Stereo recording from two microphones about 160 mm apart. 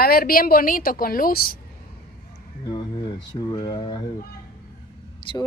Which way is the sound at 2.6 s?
25° left (ahead or behind).